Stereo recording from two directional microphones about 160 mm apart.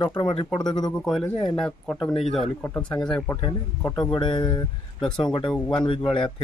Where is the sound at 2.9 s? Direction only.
5° left (ahead or behind).